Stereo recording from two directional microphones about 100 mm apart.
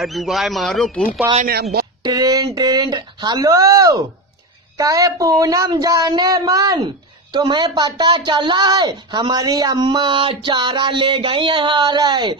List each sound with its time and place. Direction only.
0.0 s speech: centre (ahead or behind)
2.0 s speech: 40° right (ahead or behind)
7.3 s speech: 50° right (ahead or behind)